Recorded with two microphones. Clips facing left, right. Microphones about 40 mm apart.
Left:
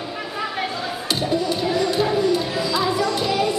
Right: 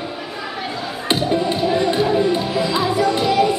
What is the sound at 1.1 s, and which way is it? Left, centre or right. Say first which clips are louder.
Music: right 4 dB; right.